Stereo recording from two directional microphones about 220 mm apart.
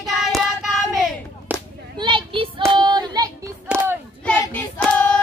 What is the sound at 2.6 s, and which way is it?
Child singing, 20° right (ahead or behind).